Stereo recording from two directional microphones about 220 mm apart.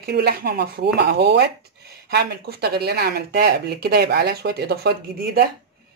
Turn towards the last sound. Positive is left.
turn(degrees=-50)  # may be behind; listen again after turning